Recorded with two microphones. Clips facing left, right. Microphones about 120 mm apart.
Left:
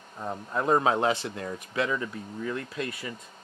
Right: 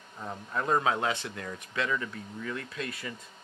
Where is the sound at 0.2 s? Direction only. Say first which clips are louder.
Left 4 dB; 20° left (ahead or behind).